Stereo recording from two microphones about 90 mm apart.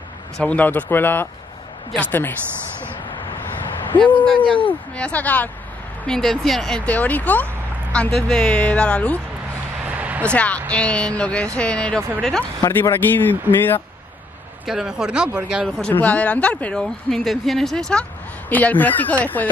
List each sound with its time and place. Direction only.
0.4 s speech: 15° left (ahead or behind)
3.9 s speech: 20° left (ahead or behind)
6.0 s speech: 5° left (ahead or behind)
6.9 s speech: 15° left (ahead or behind)
9.8 s a sound: 15° right (ahead or behind)
10.2 s speech: 15° left (ahead or behind)
12.6 s speech: 35° left (ahead or behind)
13.1 s speech: 20° left (ahead or behind)
14.7 s speech: 5° right (ahead or behind)
15.9 s speech: 15° left (ahead or behind)
16.8 s speech: 5° left (ahead or behind)
18.5 s speech: 20° left (ahead or behind)